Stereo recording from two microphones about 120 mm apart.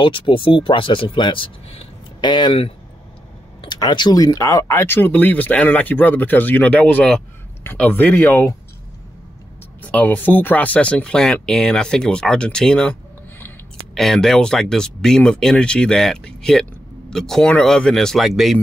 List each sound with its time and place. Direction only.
0.0 s speech: 45° left (ahead or behind); by 8.5 s 15° left (ahead or behind)
9.8 s speech: 10° left (ahead or behind)
13.9 s speech: centre (ahead or behind)